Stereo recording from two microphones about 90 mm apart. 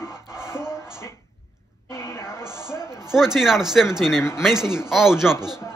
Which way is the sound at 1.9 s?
30° left (ahead or behind).